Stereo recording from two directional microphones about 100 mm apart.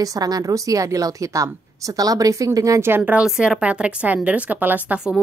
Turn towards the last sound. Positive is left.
turn(degrees=-15)  # may be behind; listen again after turning